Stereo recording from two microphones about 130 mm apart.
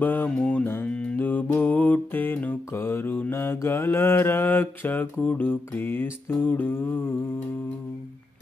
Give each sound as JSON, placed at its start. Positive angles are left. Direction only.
{"t": 0.0, "sound": "music", "side_deg": 15}
{"t": 0.4, "sound": "mantra", "side_deg": 10}